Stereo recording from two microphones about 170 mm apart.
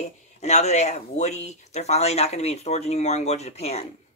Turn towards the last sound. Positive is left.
turn(degrees=40)  # may be behind; listen again after turning